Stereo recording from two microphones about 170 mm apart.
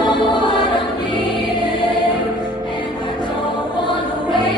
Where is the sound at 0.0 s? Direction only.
25° left (ahead or behind).